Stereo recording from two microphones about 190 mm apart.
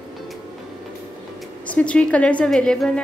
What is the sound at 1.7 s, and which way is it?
A woman's voice, 5° left (ahead or behind).